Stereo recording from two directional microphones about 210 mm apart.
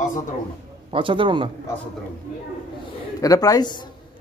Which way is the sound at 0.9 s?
25° right (ahead or behind).